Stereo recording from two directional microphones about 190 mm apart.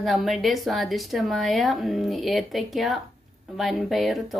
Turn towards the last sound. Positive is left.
turn(degrees=0)  # may be behind; listen again after turning